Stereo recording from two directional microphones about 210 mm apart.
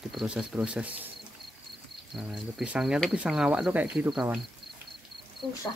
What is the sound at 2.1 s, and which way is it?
Speech, centre (ahead or behind).